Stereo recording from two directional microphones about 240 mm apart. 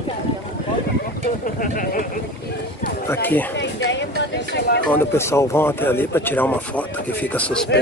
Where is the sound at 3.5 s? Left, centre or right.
Left.